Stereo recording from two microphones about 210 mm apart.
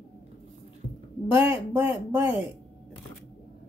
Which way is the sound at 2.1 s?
10° right (ahead or behind).